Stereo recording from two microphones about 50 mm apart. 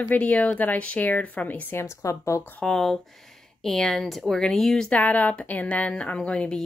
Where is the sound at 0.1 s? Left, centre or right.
Left.